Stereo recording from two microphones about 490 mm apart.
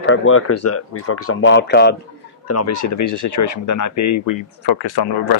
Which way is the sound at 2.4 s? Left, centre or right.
Left.